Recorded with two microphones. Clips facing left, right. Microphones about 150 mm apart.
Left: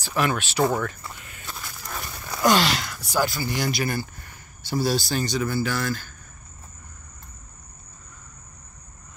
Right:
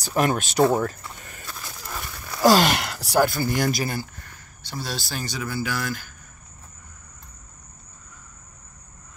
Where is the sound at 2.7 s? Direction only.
70° right (ahead or behind); by 3.8 s 50° right (ahead or behind).